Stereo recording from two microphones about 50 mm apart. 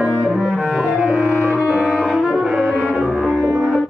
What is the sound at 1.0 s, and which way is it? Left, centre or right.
Music, right.